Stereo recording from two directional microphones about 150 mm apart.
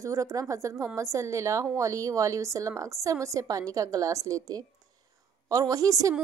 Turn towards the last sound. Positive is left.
turn(degrees=-20)  # may be behind; listen again after turning